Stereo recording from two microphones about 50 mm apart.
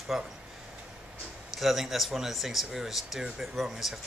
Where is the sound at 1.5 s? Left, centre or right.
Centre.